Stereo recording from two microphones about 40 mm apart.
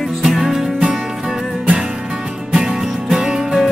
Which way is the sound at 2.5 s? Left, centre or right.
Right.